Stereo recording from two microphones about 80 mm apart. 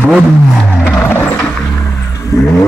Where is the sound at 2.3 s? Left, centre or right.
Left.